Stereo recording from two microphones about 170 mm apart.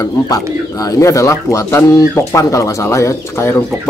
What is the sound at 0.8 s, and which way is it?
Speech, 20° left (ahead or behind).